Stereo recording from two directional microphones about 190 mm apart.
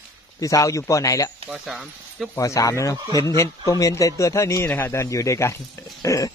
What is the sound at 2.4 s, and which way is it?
A man's voice, 15° left (ahead or behind).